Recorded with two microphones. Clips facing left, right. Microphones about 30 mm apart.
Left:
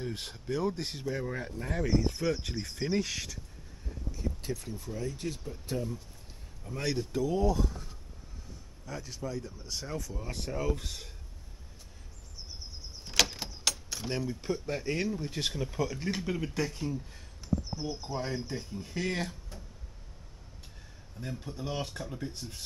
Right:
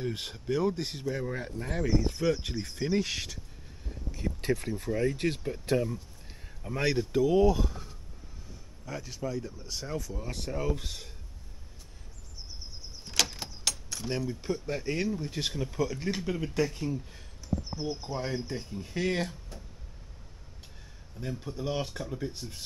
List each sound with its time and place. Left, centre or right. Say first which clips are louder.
0.0 s speech: right 3 dB; centre
3.1 s speech: right 2 dB; centre
4.4 s speech: right 7 dB; right
6.6 s speech: right 6 dB; right
6.9 s speech: right 5 dB; centre
13.0 s keys jangling: left 2 dB; centre
14.1 s speech: right 1 dB; centre
21.2 s speech: right 3 dB; centre